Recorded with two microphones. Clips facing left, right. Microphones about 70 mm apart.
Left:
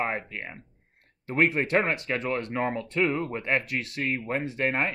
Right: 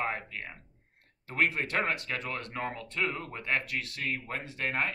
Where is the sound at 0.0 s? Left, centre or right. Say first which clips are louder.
Left 4 dB; left.